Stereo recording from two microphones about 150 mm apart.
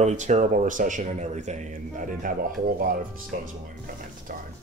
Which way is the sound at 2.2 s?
65° right (ahead or behind).